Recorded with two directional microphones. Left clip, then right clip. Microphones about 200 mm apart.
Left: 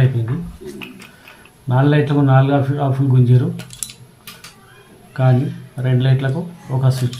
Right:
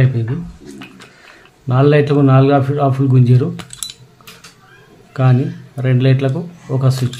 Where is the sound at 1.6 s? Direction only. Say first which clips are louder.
Right 5 dB; 55° right (ahead or behind).